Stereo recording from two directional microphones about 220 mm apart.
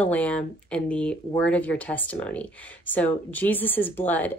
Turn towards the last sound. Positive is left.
turn(degrees=10)  # may be behind; listen again after turning